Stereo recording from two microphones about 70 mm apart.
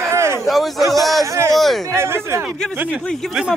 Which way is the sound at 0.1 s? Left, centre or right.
Right.